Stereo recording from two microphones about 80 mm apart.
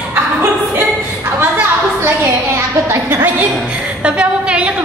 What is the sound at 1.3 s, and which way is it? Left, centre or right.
A woman's voice, right.